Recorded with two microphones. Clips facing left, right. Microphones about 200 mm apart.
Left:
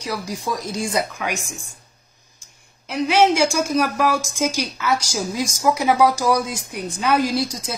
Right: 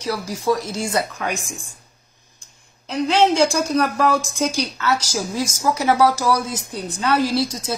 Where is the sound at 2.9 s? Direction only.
10° left (ahead or behind).